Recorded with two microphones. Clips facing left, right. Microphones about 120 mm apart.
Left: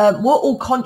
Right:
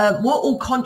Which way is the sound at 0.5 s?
30° left (ahead or behind).